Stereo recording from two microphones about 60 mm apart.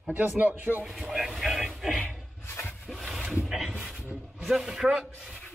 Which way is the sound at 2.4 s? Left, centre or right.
Left.